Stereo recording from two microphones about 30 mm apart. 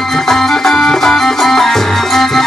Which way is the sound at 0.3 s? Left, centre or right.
Centre.